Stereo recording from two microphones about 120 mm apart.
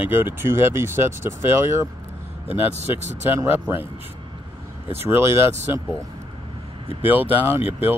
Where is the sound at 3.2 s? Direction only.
15° right (ahead or behind).